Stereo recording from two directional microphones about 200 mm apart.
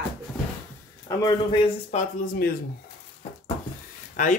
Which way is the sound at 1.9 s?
45° left (ahead or behind).